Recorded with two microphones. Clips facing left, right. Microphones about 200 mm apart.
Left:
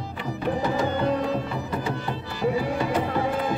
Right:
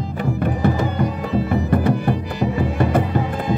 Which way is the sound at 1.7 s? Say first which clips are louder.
Right 10 dB; 55° right (ahead or behind).